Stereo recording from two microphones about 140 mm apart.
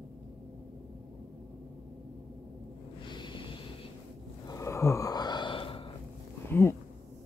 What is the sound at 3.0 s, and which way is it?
Snort, 35° left (ahead or behind).